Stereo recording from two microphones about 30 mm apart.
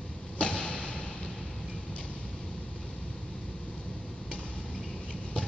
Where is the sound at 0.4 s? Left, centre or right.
Left.